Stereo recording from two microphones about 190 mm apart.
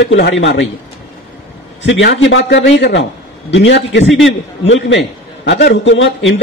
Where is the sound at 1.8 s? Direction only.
75° left (ahead or behind).